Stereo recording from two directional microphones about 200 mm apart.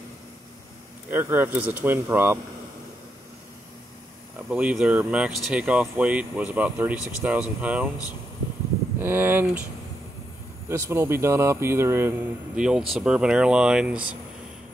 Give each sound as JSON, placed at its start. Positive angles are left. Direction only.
{"t": 1.1, "sound": "speech", "side_deg": -10}
{"t": 4.5, "sound": "speech", "side_deg": -5}
{"t": 9.0, "sound": "speech", "side_deg": -10}
{"t": 10.7, "sound": "speech", "side_deg": -10}